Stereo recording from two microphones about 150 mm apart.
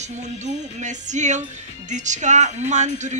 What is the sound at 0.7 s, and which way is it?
Speech, 55° right (ahead or behind).